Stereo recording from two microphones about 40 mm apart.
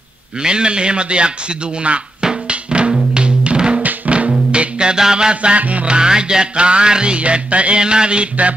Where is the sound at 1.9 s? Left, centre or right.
Right.